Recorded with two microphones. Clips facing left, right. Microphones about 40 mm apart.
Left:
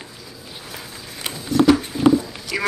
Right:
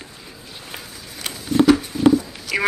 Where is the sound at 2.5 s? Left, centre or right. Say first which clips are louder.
Right 3 dB; centre.